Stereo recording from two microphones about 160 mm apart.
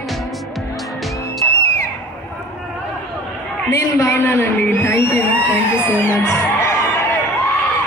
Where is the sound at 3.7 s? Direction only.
15° left (ahead or behind).